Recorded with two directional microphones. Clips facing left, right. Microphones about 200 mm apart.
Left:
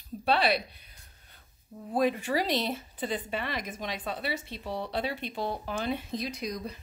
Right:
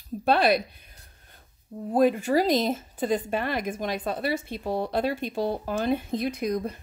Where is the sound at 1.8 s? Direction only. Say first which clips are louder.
Right 6 dB; 45° right (ahead or behind).